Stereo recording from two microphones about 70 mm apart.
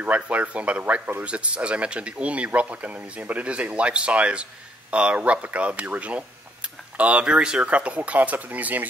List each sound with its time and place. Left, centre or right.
0.0 s speech: centre